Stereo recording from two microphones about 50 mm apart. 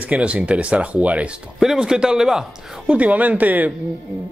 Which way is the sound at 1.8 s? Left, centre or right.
Centre.